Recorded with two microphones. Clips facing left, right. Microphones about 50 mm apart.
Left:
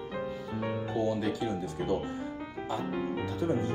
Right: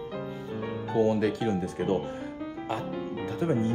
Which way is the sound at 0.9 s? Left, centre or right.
Right.